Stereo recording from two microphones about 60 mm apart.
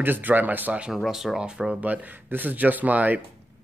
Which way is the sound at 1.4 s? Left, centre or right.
Centre.